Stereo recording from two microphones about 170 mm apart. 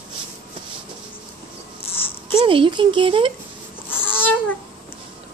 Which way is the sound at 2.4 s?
30° right (ahead or behind).